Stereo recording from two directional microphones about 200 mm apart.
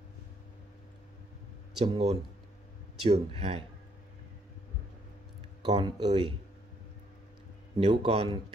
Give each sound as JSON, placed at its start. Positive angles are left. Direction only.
{"t": 1.9, "sound": "speech", "side_deg": -30}
{"t": 5.6, "sound": "speech", "side_deg": -20}
{"t": 7.7, "sound": "speech", "side_deg": -25}